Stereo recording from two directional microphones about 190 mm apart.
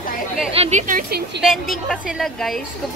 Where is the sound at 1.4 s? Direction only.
Centre (ahead or behind).